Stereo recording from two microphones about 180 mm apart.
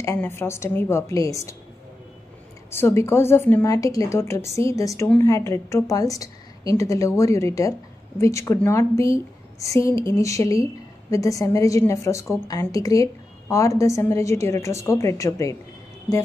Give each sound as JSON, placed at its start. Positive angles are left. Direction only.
{"t": 0.0, "sound": "a woman's voice", "side_deg": 15}
{"t": 2.7, "sound": "a woman's voice", "side_deg": 15}